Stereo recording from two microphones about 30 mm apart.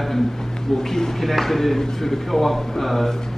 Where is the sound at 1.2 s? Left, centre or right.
Centre.